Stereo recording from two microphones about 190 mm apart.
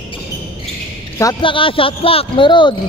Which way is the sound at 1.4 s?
25° left (ahead or behind).